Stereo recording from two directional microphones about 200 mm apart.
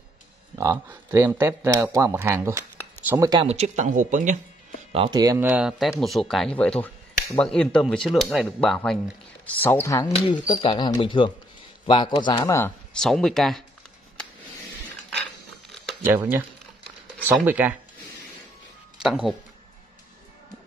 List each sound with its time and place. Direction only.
0.6 s a man's voice: 15° right (ahead or behind)
3.4 s speech: 35° right (ahead or behind)
4.9 s speech: 25° right (ahead or behind); by 10.1 s 15° left (ahead or behind)
10.1 s speech: 30° left (ahead or behind)
13.0 s speech: centre (ahead or behind)
16.0 s a man's voice: 10° right (ahead or behind)
18.9 s speech: 5° right (ahead or behind)